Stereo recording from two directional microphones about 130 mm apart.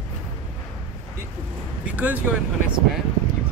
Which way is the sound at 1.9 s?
10° right (ahead or behind).